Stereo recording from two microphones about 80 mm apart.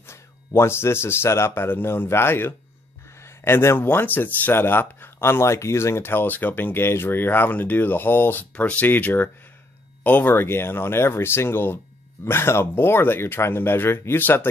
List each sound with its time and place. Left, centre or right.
0.0 s speech: left